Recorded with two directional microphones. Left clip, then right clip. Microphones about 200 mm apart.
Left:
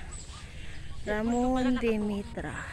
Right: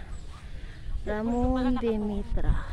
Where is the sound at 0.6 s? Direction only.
5° right (ahead or behind).